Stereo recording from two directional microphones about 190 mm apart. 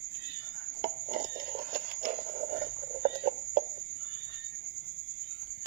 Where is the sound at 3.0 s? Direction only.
55° right (ahead or behind).